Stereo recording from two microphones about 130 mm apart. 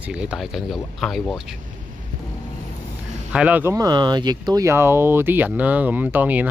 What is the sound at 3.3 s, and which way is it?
Speech, 10° right (ahead or behind).